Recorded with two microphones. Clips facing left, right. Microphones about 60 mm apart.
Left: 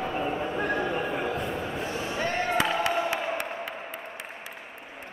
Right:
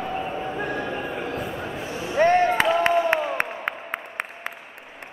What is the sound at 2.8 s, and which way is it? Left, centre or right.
Music, right.